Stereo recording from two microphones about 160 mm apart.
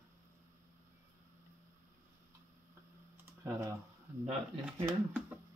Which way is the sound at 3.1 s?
15° right (ahead or behind).